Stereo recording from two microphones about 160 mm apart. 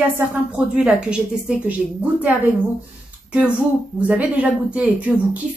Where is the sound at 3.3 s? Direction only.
5° right (ahead or behind).